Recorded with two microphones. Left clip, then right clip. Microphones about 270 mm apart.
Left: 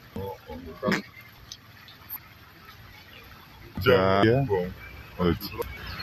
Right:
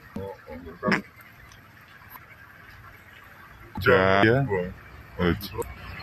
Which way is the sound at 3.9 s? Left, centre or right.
Centre.